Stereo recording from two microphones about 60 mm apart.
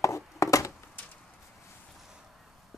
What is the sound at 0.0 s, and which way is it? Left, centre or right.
Chopping, left.